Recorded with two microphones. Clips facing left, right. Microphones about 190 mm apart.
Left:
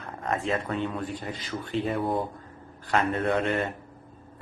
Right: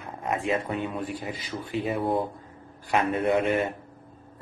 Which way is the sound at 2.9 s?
15° right (ahead or behind).